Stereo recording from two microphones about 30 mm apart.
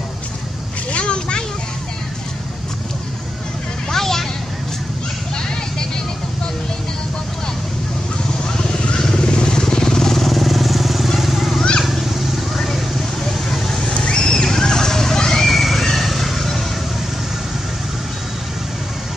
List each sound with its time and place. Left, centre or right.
0.9 s vehicle: left
3.9 s a sound: centre
8.9 s vehicle: left
10.2 s vehicle: centre
13.5 s vehicle: centre
13.9 s neigh: left
15.4 s neigh: centre